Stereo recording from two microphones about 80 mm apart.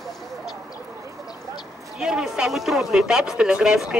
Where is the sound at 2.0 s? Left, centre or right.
Centre.